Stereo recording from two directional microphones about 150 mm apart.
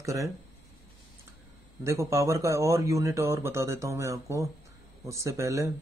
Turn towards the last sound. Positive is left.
turn(degrees=-20)  # may be behind; listen again after turning